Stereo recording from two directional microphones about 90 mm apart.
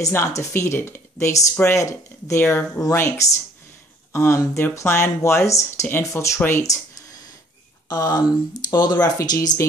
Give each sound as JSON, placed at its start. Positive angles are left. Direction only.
{"t": 0.1, "sound": "speech", "side_deg": 30}